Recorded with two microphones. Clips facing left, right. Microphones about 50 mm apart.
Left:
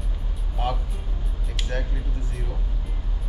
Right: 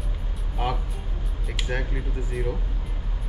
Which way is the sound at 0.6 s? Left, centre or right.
Centre.